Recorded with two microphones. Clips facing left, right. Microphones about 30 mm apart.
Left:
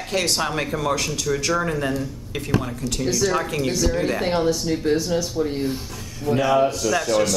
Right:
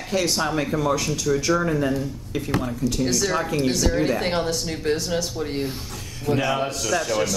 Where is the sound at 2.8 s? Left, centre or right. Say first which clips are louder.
Right 3 dB; left.